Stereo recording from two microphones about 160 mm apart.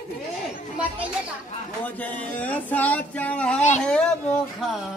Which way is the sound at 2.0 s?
10° left (ahead or behind).